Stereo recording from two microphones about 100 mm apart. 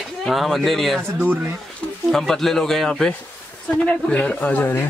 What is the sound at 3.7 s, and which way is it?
Speech, 15° left (ahead or behind).